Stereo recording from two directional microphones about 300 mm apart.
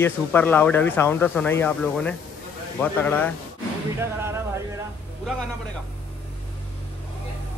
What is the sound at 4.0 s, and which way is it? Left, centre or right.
Music, centre.